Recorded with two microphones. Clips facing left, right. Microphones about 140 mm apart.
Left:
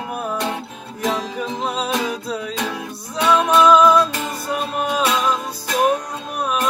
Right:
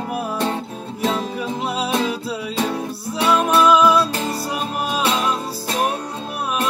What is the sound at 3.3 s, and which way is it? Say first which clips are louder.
Music: left 2 dB; 10° right (ahead or behind).